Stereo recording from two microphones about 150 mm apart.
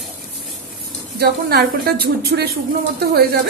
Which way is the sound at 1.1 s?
90° right.